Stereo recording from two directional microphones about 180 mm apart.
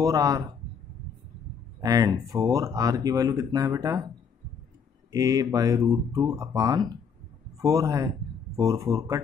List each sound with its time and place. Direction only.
0.0 s speech: 20° right (ahead or behind)
1.8 s speech: 20° right (ahead or behind)
5.1 s speech: 20° right (ahead or behind)